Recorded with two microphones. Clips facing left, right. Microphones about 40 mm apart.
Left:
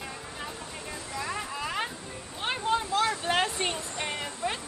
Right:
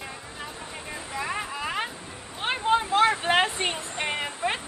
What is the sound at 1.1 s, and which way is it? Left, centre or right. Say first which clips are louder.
Vehicle: right 3 dB; right.